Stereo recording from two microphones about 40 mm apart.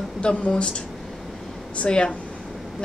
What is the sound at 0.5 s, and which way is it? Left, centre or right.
A woman's voice, left.